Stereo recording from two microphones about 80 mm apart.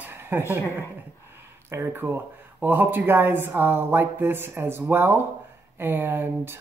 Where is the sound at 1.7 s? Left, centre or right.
Right.